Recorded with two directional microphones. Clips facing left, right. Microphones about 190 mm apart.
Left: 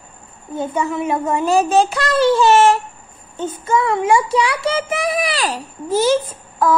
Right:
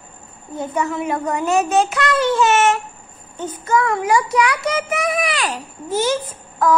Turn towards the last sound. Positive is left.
turn(degrees=30)  # may be behind; listen again after turning